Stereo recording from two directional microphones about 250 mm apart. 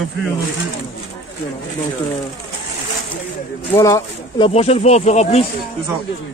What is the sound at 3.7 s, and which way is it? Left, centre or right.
Speech, centre.